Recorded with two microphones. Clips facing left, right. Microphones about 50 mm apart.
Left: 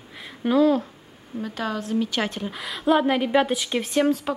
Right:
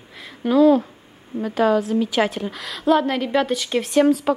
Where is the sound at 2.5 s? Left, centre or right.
Centre.